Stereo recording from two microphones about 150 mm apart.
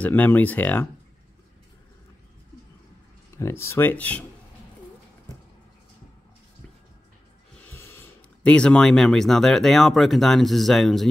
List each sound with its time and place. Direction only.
0.0 s speech: 10° left (ahead or behind)
3.3 s speech: 15° left (ahead or behind)
7.7 s speech: 15° left (ahead or behind)